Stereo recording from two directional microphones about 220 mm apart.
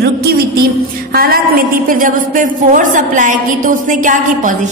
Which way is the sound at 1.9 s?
40° right (ahead or behind).